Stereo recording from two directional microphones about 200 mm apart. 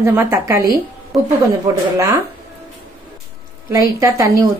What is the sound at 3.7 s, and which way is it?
Speech, 15° right (ahead or behind).